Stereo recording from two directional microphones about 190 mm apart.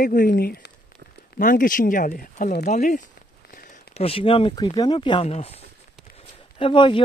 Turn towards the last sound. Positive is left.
turn(degrees=25)  # may be behind; listen again after turning